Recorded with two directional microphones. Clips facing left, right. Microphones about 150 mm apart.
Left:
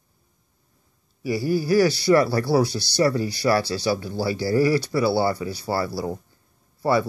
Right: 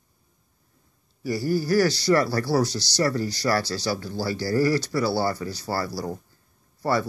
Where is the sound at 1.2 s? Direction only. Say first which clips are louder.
Left 2 dB; 15° left (ahead or behind).